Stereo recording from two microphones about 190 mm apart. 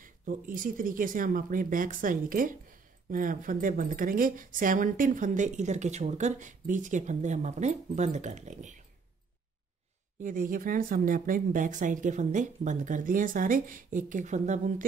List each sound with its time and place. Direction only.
0.0 s speech: 45° right (ahead or behind)
10.2 s speech: 45° right (ahead or behind)